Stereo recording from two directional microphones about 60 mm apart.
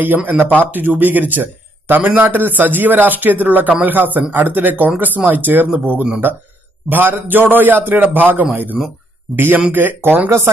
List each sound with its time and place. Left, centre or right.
0.0 s speech: right